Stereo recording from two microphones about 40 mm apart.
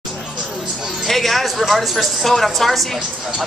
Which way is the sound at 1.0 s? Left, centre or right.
Centre.